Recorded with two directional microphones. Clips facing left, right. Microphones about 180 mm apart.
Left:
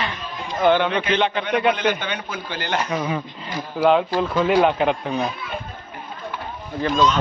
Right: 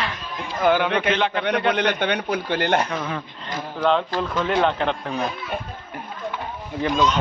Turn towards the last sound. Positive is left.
turn(degrees=-15)  # may be behind; listen again after turning